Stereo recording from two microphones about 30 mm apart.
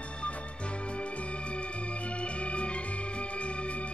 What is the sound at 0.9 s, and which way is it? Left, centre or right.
Organ, left.